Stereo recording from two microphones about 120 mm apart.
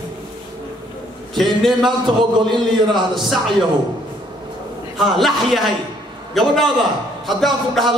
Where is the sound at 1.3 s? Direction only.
Centre (ahead or behind).